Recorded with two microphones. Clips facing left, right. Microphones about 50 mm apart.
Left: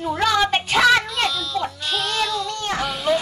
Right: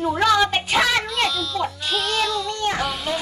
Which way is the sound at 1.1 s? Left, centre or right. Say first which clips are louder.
Right 1 dB; centre.